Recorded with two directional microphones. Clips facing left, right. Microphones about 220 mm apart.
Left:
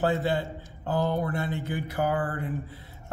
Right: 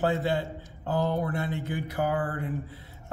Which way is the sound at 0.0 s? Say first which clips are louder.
Left 1 dB; centre (ahead or behind).